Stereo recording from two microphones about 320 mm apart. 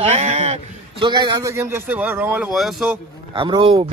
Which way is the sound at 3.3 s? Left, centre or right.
Centre.